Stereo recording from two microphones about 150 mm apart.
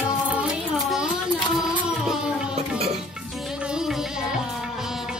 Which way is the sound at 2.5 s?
45° right (ahead or behind).